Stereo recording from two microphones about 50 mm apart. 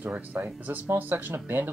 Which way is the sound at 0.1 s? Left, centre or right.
Right.